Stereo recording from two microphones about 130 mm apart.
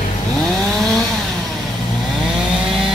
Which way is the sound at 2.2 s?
Centre (ahead or behind).